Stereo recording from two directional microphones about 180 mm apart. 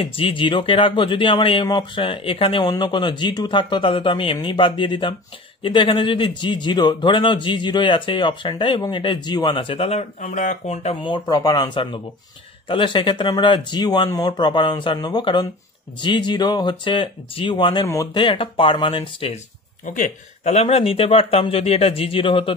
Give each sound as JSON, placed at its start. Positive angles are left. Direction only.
{"t": 0.0, "sound": "speech", "side_deg": 30}
{"t": 11.0, "sound": "speech", "side_deg": 25}